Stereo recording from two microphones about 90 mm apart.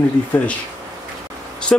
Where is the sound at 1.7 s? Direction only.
10° left (ahead or behind).